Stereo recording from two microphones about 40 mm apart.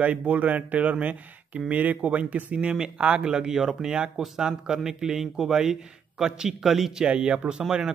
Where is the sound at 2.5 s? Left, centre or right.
Right.